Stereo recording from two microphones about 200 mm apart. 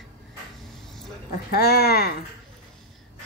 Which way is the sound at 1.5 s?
55° left (ahead or behind).